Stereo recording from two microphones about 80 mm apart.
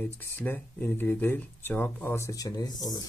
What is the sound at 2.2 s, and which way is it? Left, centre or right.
Speech, left.